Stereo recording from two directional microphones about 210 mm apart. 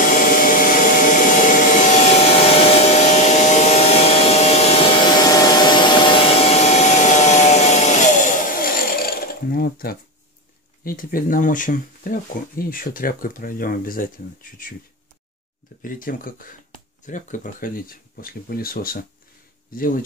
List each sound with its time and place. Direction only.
0.0 s vacuum cleaner: 40° left (ahead or behind)
10.8 s speech: 45° left (ahead or behind)
15.8 s speech: 40° left (ahead or behind)